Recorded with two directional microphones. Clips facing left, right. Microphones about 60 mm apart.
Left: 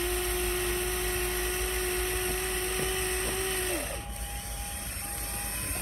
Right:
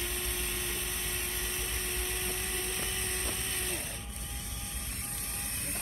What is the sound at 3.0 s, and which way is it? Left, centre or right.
Vehicle, left.